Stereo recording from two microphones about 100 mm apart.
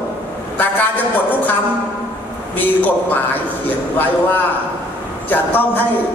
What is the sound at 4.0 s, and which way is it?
Speech, 20° left (ahead or behind).